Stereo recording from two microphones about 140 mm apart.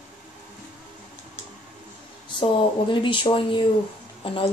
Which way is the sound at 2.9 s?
35° left (ahead or behind).